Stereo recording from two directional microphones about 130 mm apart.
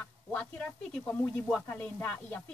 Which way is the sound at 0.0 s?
10° left (ahead or behind).